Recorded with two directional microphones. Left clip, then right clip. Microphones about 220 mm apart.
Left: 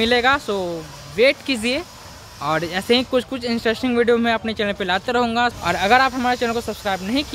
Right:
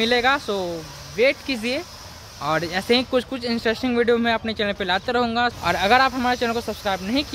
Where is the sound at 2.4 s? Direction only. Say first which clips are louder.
Left 1 dB; 5° left (ahead or behind).